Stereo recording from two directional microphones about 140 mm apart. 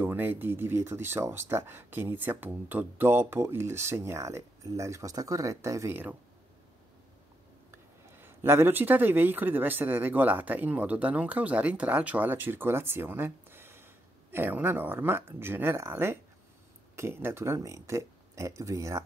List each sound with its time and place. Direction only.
0.0 s speech: 15° right (ahead or behind)
8.2 s speech: 15° right (ahead or behind)